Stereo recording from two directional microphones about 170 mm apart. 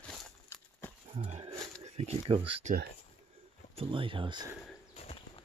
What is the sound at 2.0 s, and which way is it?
Speech, 30° right (ahead or behind).